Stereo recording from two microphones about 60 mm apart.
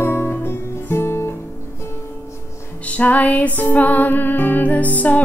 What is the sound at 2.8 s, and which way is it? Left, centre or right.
Music, left.